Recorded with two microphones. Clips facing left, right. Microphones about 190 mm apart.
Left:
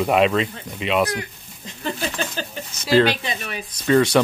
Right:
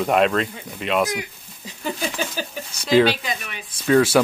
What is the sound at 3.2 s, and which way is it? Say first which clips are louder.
Speech: left 1 dB; 35° left (ahead or behind).